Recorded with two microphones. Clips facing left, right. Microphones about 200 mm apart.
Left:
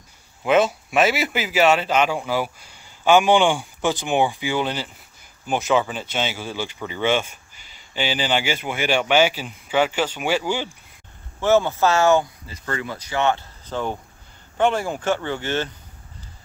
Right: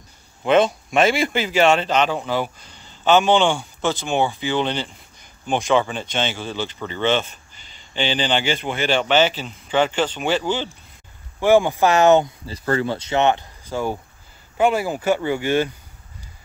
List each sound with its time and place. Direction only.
0.4 s speech: 5° left (ahead or behind)
11.4 s speech: 15° right (ahead or behind)
12.5 s speech: 35° right (ahead or behind); by 15.7 s 10° right (ahead or behind)